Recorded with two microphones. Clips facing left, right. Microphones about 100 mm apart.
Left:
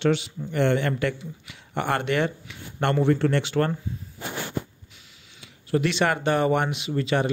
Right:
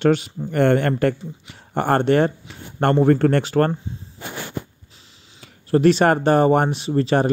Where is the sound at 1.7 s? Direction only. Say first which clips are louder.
Right 7 dB; 40° right (ahead or behind).